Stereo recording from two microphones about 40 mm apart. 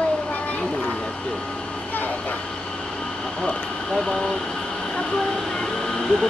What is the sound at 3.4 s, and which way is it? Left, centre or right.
Speech, left.